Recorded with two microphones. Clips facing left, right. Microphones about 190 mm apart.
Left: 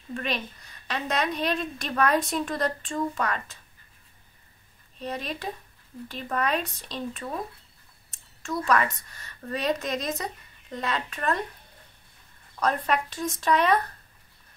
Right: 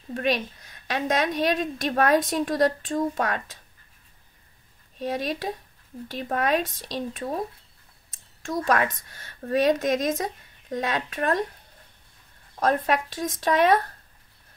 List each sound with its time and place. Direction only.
0.1 s a woman's voice: 50° right (ahead or behind)
4.9 s a woman's voice: 45° right (ahead or behind)
8.5 s a woman's voice: 45° right (ahead or behind)
12.5 s a woman's voice: 45° right (ahead or behind)